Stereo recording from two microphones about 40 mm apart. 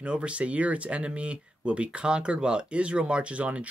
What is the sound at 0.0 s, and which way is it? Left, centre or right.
Speech, right.